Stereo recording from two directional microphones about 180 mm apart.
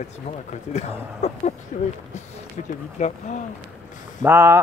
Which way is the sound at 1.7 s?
40° left (ahead or behind).